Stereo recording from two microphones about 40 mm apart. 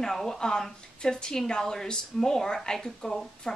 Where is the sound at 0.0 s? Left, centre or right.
Centre.